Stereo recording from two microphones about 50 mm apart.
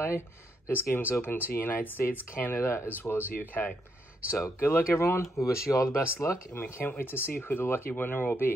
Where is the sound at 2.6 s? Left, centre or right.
Left.